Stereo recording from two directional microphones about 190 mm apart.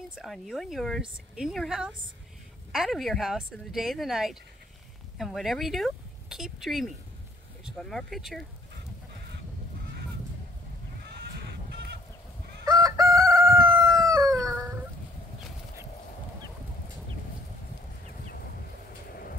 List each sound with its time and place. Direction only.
0.1 s speech: centre (ahead or behind)
11.2 s goat: 60° right (ahead or behind)
12.6 s chicken: 20° right (ahead or behind)